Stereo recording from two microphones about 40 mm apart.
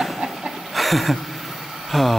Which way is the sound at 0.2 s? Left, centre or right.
Centre.